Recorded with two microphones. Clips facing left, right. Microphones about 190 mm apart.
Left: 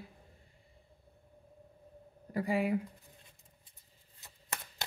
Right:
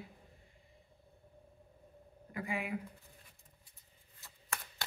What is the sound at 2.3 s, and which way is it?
Speech, 35° left (ahead or behind).